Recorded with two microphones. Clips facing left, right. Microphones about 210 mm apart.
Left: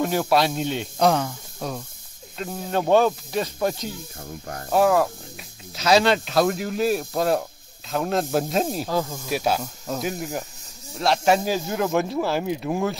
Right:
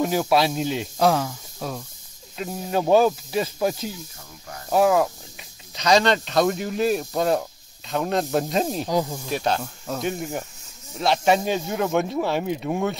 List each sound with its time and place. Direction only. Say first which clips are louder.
0.0 s speech: even; centre (ahead or behind)
3.9 s speech: left 4 dB; 50° left (ahead or behind)
4.6 s speech: even; centre (ahead or behind)
8.8 s speech: right 2 dB; 15° right (ahead or behind)
9.3 s speech: left 2 dB; 5° left (ahead or behind)